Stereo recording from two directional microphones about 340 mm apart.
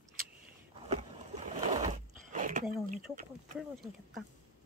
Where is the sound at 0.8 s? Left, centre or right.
Centre.